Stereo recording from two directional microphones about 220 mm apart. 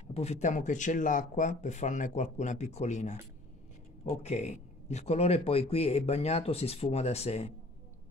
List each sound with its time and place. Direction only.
0.1 s speech: 30° left (ahead or behind)